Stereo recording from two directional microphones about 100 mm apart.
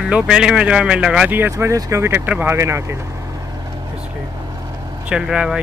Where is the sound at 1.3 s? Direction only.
20° right (ahead or behind).